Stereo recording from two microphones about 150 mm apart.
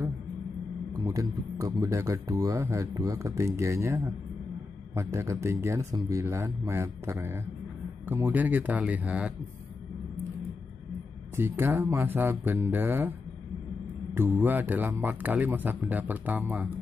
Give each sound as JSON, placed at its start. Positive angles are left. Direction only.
{"t": 1.0, "sound": "speech", "side_deg": -20}
{"t": 11.3, "sound": "speech", "side_deg": -15}
{"t": 14.1, "sound": "speech", "side_deg": -15}